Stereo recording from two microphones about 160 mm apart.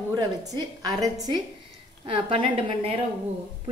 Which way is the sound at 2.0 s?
35° right (ahead or behind).